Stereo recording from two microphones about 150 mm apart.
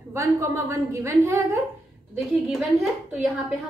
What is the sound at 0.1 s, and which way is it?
A woman's voice, 20° right (ahead or behind).